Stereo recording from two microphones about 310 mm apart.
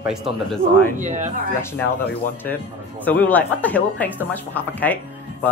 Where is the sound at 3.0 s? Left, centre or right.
Centre.